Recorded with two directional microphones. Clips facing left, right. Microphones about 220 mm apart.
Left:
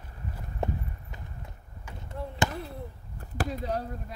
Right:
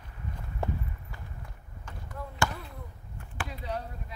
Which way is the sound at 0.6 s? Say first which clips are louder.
Left 2 dB; 20° left (ahead or behind).